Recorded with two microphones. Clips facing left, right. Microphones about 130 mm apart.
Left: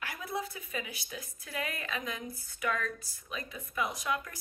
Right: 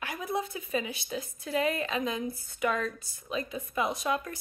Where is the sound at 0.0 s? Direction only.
20° right (ahead or behind).